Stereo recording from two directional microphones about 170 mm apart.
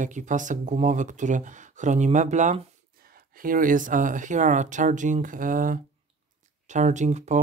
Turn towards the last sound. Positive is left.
turn(degrees=-45)  # may be behind; listen again after turning